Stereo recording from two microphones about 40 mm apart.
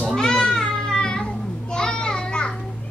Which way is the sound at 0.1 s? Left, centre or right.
Centre.